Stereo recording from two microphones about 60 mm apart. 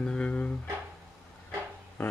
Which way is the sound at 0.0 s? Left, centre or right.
Centre.